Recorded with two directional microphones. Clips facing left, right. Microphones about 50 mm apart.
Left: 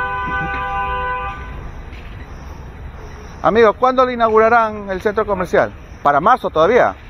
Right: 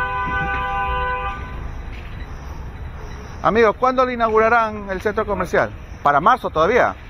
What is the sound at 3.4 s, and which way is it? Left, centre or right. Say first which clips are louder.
Speech: left 3 dB; centre.